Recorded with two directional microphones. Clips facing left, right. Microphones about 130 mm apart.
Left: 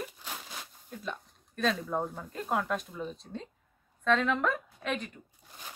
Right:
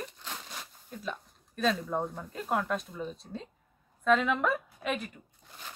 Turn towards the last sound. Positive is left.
turn(degrees=-5)  # may be behind; listen again after turning